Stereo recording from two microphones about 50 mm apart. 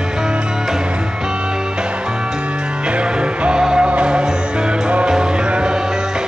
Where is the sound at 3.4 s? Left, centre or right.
Centre.